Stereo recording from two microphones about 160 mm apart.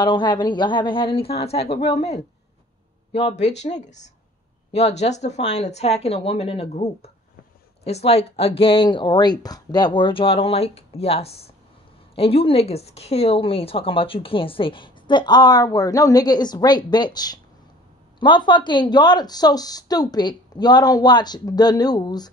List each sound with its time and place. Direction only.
0.0 s speech: 25° left (ahead or behind)
3.1 s speech: 40° left (ahead or behind)